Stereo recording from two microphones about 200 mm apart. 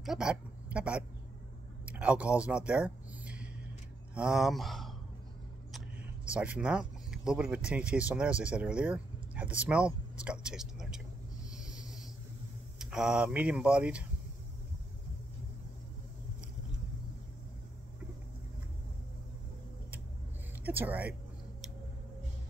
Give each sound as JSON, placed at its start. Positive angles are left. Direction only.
{"t": 0.0, "sound": "speech", "side_deg": -5}
{"t": 1.9, "sound": "a sound", "side_deg": -5}
{"t": 4.1, "sound": "speech", "side_deg": -5}
{"t": 6.3, "sound": "speech", "side_deg": -5}
{"t": 11.5, "sound": "a sound", "side_deg": -5}
{"t": 12.7, "sound": "speech", "side_deg": -5}
{"t": 20.6, "sound": "speech", "side_deg": -10}